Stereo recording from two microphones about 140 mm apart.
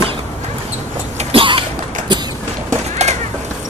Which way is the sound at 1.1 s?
40° right (ahead or behind).